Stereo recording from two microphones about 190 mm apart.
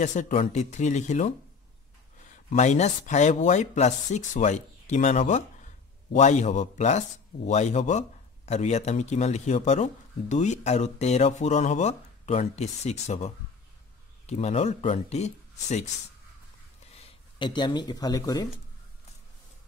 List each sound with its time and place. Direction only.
0.0 s speech: 40° left (ahead or behind)
2.3 s speech: 40° left (ahead or behind)
16.9 s speech: 25° left (ahead or behind)